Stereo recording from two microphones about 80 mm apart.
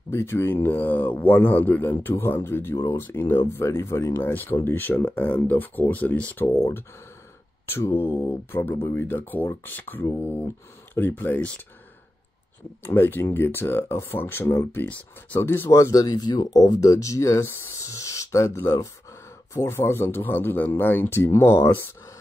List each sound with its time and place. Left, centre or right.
0.1 s speech: left
4.2 s speech: left
7.6 s speech: left
12.8 s speech: left
15.7 s speech: left